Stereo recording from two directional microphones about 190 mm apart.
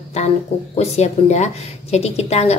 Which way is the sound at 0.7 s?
35° left (ahead or behind).